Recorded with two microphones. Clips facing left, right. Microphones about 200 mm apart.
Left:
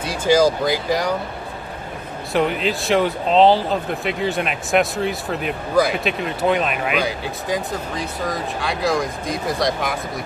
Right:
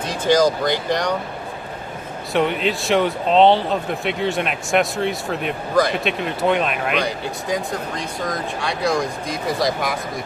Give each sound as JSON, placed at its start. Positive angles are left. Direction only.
{"t": 0.0, "sound": "speech", "side_deg": 10}
{"t": 2.3, "sound": "speech", "side_deg": 0}